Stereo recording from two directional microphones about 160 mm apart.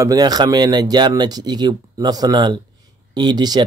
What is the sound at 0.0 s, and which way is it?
A man's voice, 25° right (ahead or behind).